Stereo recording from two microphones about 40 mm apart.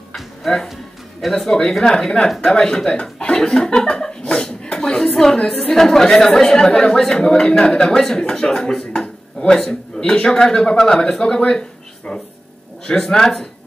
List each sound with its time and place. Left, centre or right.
0.4 s a woman's voice: centre; by 3.4 s left
3.4 s speech: centre
5.3 s a woman's voice: left